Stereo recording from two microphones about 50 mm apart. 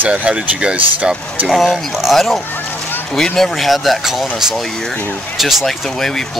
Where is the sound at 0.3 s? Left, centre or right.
Centre.